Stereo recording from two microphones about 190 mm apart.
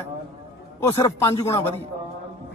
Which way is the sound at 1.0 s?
20° left (ahead or behind).